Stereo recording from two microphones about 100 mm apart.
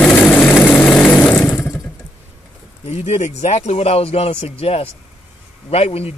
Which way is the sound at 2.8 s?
90° left.